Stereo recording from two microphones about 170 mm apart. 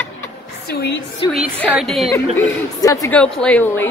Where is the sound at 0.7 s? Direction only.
75° left (ahead or behind).